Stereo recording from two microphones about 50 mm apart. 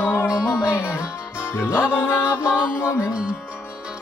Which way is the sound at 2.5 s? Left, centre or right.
Right.